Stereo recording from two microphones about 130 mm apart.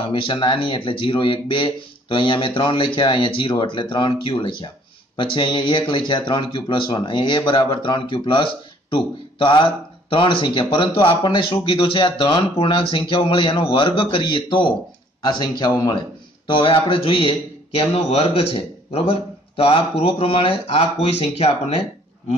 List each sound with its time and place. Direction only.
0.1 s speech: 40° left (ahead or behind)